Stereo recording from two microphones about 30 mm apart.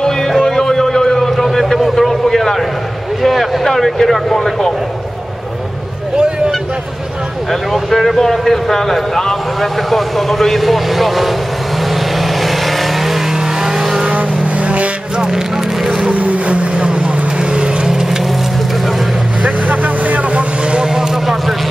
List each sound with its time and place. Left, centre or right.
0.5 s a sound: centre
1.3 s a man's voice: centre
3.2 s speech: centre
7.7 s speech: centre
11.9 s vehicle: centre
14.1 s vehicle: right
15.3 s vehicle: centre
16.1 s vehicle: right
16.4 s vehicle: right
17.8 s vehicle: centre
19.4 s vehicle: right
20.8 s vehicle: right